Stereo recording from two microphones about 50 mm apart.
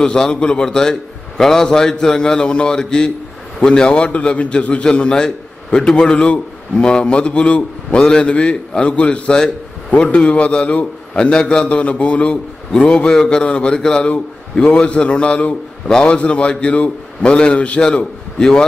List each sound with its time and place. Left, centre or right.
0.0 s a man's voice: centre